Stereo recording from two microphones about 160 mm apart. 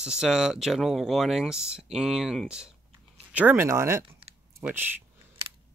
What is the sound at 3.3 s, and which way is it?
Speech, 15° right (ahead or behind).